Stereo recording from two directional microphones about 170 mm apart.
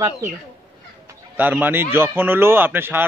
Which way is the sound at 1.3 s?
10° right (ahead or behind).